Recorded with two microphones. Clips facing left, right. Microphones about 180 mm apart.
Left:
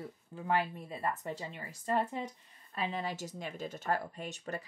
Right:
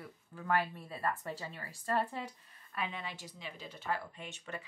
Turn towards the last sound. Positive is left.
turn(degrees=40)  # may be behind; listen again after turning